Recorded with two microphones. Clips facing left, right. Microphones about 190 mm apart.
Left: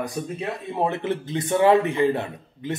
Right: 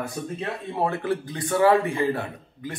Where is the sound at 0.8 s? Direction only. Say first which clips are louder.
Left 1 dB; 20° left (ahead or behind).